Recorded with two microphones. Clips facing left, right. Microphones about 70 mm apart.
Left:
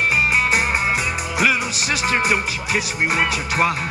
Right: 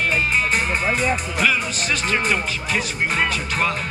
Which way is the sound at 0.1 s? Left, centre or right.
Centre.